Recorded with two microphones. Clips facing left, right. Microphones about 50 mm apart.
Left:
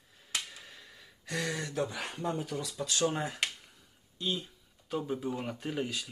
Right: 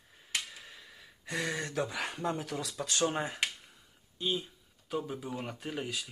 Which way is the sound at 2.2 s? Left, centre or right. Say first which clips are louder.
Left 1 dB; right.